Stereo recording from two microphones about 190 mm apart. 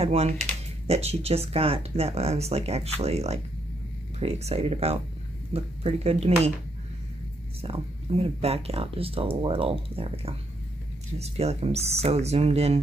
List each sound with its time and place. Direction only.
0.0 s speech: 30° right (ahead or behind)
7.6 s speech: 30° right (ahead or behind)